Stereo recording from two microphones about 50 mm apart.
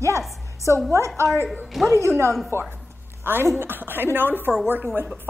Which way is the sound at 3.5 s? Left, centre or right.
Right.